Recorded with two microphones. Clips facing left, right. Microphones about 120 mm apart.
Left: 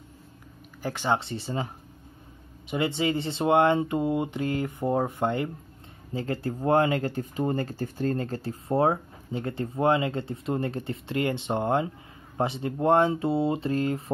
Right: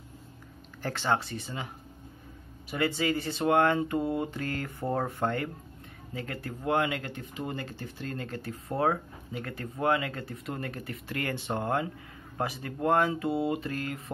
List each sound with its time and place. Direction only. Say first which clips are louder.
0.8 s speech: left 2 dB; 15° left (ahead or behind); by 1.7 s 30° left (ahead or behind)
2.7 s speech: left 2 dB; 25° left (ahead or behind)
6.1 s speech: left 7 dB; 30° left (ahead or behind)